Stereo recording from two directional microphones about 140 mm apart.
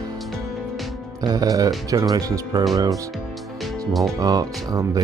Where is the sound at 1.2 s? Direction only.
25° right (ahead or behind).